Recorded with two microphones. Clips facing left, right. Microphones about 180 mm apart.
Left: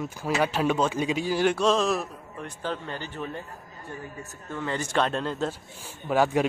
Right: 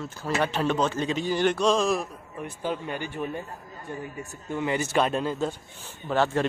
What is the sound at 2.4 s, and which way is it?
A man's voice, 10° right (ahead or behind).